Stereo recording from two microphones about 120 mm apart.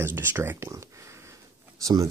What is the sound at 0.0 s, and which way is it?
Speech, 20° right (ahead or behind).